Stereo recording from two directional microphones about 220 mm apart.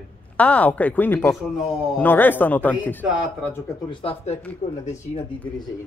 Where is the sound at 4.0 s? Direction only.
25° left (ahead or behind).